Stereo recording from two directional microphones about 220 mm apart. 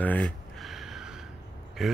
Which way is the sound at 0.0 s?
5° left (ahead or behind).